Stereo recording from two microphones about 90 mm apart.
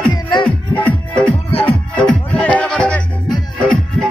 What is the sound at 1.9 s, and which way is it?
Music, 10° left (ahead or behind).